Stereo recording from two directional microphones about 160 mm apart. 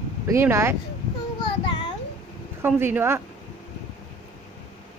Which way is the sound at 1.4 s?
30° left (ahead or behind).